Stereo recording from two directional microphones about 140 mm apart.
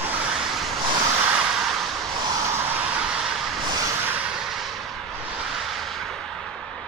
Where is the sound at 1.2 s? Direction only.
10° right (ahead or behind).